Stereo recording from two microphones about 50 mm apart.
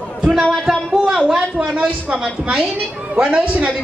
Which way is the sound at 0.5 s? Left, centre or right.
Centre.